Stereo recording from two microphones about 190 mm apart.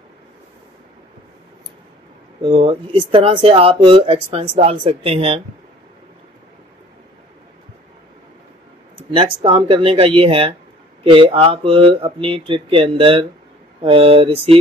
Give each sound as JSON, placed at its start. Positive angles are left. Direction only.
{"t": 2.4, "sound": "speech", "side_deg": -25}
{"t": 9.1, "sound": "speech", "side_deg": -25}